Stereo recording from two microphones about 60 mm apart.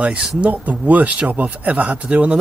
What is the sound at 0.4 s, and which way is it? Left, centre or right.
Speech, right.